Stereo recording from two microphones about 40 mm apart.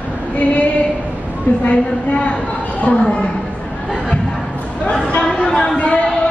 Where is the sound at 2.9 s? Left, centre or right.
Left.